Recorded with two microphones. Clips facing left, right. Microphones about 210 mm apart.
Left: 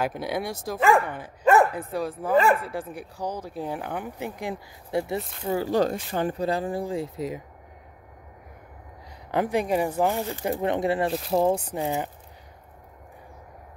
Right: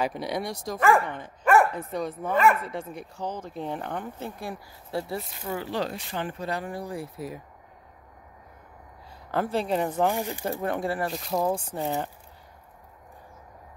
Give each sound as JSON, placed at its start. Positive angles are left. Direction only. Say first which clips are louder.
{"t": 0.0, "sound": "speech", "louder": "left 1 dB", "side_deg": 0}
{"t": 0.7, "sound": "speech", "louder": "left 1 dB", "side_deg": 15}
{"t": 1.4, "sound": "bow-wow", "louder": "left 2 dB", "side_deg": 20}
{"t": 2.0, "sound": "speech", "louder": "left 2 dB", "side_deg": 5}
{"t": 2.3, "sound": "speech", "louder": "left 2 dB", "side_deg": 30}
{"t": 2.9, "sound": "speech", "louder": "left 2 dB", "side_deg": 10}
{"t": 5.7, "sound": "speech", "louder": "left 7 dB", "side_deg": 45}
{"t": 9.3, "sound": "speech", "louder": "left 2 dB", "side_deg": 15}
{"t": 10.1, "sound": "speech", "louder": "left 1 dB", "side_deg": -15}
{"t": 10.4, "sound": "speech", "louder": "left 7 dB", "side_deg": 20}
{"t": 11.1, "sound": "speech", "louder": "left 5 dB", "side_deg": 0}
{"t": 11.3, "sound": "speech", "louder": "left 4 dB", "side_deg": 25}
{"t": 11.7, "sound": "speech", "louder": "left 2 dB", "side_deg": 15}